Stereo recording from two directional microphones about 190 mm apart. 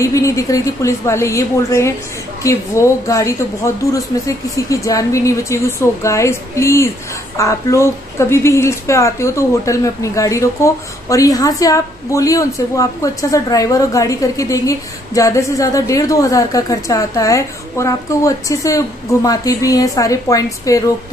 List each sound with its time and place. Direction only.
0.0 s a woman's voice: 15° left (ahead or behind)